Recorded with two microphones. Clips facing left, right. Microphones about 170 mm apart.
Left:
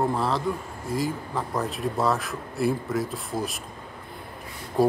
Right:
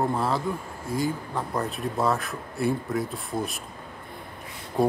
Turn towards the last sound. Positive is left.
turn(degrees=0)  # may be behind; listen again after turning